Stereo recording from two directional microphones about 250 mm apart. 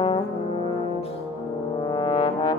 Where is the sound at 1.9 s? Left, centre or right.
Centre.